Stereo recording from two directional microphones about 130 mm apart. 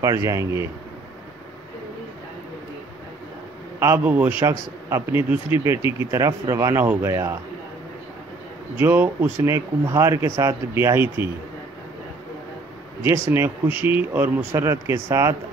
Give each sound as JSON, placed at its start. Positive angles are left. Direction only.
{"t": 0.0, "sound": "speech", "side_deg": -25}
{"t": 3.8, "sound": "speech", "side_deg": -15}
{"t": 8.7, "sound": "speech", "side_deg": -15}
{"t": 13.0, "sound": "speech", "side_deg": -20}